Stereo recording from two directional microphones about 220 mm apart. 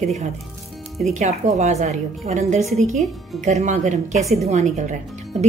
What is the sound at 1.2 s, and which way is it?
A woman's voice, 30° right (ahead or behind).